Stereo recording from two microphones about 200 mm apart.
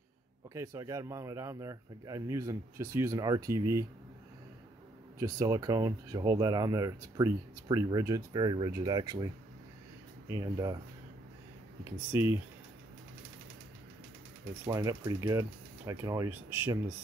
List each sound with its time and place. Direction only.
0.6 s speech: 15° right (ahead or behind)
5.2 s speech: 20° right (ahead or behind)
10.3 s speech: 20° right (ahead or behind)
12.1 s speech: 10° right (ahead or behind)
14.7 s speech: 15° right (ahead or behind)